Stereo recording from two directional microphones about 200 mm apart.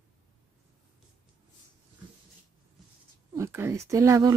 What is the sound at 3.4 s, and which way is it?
Speech, 15° right (ahead or behind).